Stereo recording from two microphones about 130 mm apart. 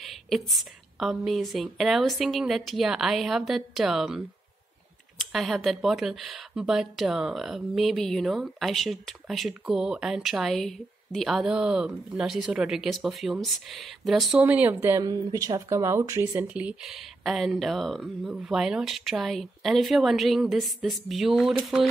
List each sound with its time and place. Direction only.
0.5 s speech: centre (ahead or behind)
5.2 s speech: centre (ahead or behind)
14.4 s speech: 15° right (ahead or behind)
16.4 s speech: 10° right (ahead or behind)